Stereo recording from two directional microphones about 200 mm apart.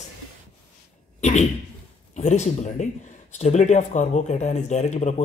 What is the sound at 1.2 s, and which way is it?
Speech, 35° left (ahead or behind).